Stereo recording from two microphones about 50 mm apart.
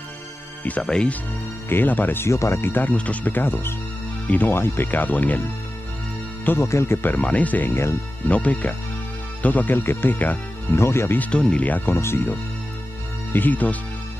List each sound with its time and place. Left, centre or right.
0.8 s speech: centre
1.7 s speech: left
2.2 s speech: left
2.6 s speech: left
3.3 s speech: left
6.6 s speech: left
7.2 s speech: left
7.7 s speech: left
8.3 s speech: left
10.7 s speech: left
11.1 s speech: left
11.8 s speech: left
13.3 s speech: left